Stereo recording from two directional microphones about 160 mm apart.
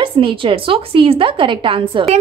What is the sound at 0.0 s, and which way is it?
A woman's voice, 30° right (ahead or behind).